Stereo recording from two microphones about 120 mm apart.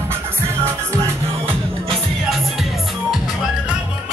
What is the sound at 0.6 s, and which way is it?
Music, 25° right (ahead or behind).